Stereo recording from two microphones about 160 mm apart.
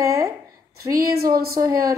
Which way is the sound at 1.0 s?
70° right (ahead or behind).